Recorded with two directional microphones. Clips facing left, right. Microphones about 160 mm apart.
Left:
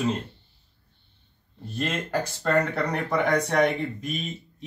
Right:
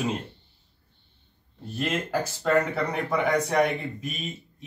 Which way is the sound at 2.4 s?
5° right (ahead or behind).